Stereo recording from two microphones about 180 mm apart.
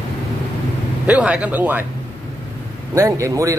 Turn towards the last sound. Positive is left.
turn(degrees=-15)  # may be behind; listen again after turning